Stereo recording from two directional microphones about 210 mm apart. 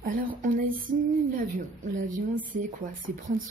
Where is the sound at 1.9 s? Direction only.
35° right (ahead or behind).